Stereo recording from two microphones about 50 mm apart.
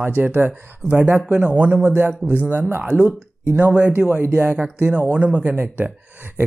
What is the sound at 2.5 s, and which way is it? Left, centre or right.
Speech, right.